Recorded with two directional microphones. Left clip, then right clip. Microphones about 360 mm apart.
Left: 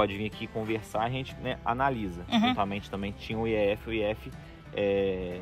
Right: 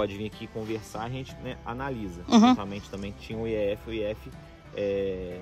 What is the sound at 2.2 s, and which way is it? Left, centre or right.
Speech, centre.